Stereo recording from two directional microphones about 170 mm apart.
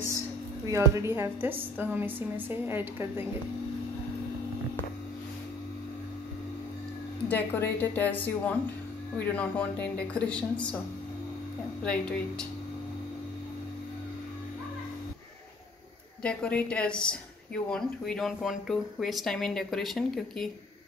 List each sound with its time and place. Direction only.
0.7 s a woman's voice: 15° right (ahead or behind)
7.2 s speech: 10° left (ahead or behind)
11.8 s speech: 5° left (ahead or behind)
16.2 s speech: 5° left (ahead or behind)